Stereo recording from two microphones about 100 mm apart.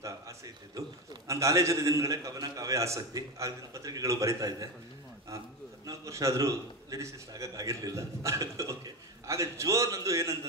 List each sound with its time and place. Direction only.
0.7 s a man's voice: 30° right (ahead or behind)
5.9 s a man's voice: 30° right (ahead or behind)